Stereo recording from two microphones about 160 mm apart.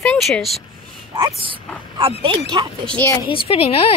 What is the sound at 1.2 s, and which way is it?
Speech, 30° right (ahead or behind).